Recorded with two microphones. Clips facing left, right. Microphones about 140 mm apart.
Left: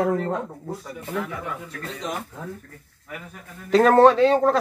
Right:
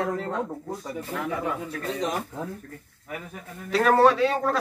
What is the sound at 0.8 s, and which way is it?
Speech, 30° right (ahead or behind).